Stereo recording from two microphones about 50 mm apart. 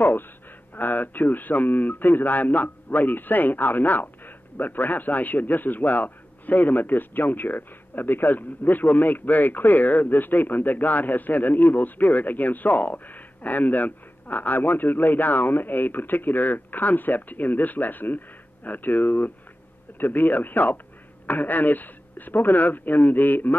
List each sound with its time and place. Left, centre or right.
0.0 s speech: left